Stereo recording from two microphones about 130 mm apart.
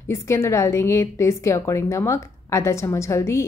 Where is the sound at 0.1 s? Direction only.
20° left (ahead or behind).